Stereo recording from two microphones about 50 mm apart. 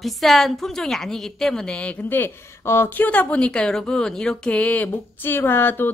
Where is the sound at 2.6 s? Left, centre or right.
Left.